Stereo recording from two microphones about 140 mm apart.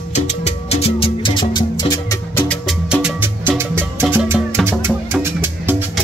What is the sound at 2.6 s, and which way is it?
Music, 5° right (ahead or behind).